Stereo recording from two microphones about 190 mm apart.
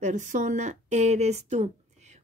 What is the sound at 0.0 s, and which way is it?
Speech, 40° right (ahead or behind).